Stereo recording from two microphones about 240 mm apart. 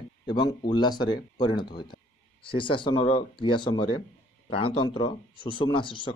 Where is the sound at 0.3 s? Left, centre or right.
Centre.